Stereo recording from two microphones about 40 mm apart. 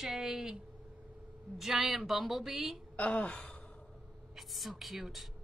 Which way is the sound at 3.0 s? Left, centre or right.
Left.